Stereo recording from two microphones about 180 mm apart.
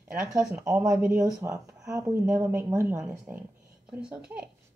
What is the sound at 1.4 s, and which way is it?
Speech, 20° right (ahead or behind).